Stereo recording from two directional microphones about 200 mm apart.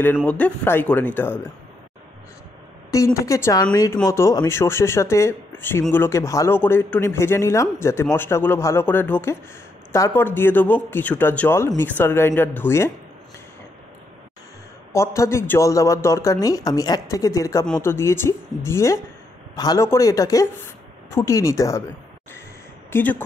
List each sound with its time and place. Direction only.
0.0 s speech: 10° left (ahead or behind)
3.2 s speech: 15° left (ahead or behind)
14.9 s speech: 15° left (ahead or behind)
22.8 s speech: 10° left (ahead or behind)